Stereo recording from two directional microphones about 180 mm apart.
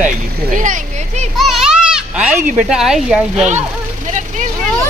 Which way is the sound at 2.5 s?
Centre (ahead or behind).